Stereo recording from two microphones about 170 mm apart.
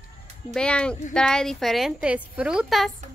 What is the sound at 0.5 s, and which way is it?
A woman's voice, 5° left (ahead or behind).